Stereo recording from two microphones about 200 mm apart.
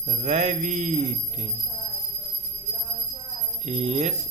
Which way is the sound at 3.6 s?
30° right (ahead or behind).